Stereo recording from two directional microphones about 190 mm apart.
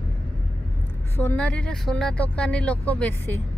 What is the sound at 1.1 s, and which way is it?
Speech, 10° left (ahead or behind).